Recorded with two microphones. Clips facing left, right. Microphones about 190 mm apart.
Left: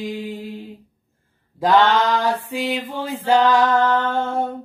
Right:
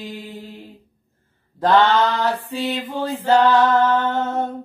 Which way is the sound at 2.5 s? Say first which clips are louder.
Even; 10° left (ahead or behind).